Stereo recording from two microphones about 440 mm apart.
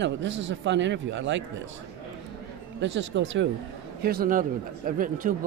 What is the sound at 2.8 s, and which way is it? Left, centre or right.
A man's voice, right.